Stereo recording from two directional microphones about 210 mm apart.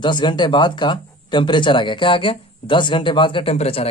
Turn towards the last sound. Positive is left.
turn(degrees=30)  # may be behind; listen again after turning